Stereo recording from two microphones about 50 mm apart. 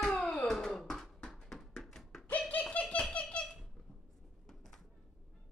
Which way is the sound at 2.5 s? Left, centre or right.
Left.